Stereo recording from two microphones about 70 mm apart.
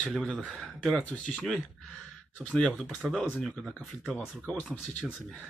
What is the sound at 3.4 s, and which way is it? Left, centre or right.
Speech, centre.